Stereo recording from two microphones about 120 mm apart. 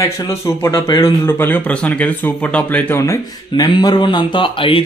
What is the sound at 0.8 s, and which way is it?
Speech, 35° left (ahead or behind).